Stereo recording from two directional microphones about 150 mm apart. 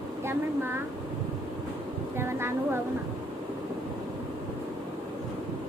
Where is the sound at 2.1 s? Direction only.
15° right (ahead or behind).